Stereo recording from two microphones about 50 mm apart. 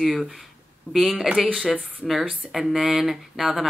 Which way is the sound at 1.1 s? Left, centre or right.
Centre.